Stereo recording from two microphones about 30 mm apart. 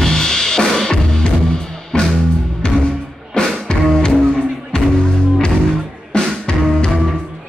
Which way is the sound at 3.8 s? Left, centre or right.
Centre.